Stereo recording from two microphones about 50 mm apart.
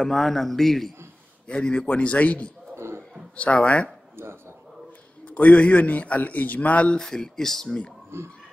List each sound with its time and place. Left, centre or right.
0.0 s a man's voice: centre
1.5 s speech: centre
2.7 s cough: right
3.3 s speech: left
5.2 s a man's voice: left
7.0 s speech: centre
8.1 s music: right